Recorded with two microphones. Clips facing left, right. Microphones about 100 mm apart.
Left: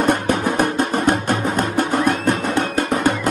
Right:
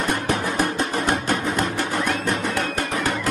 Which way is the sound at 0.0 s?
50° left (ahead or behind).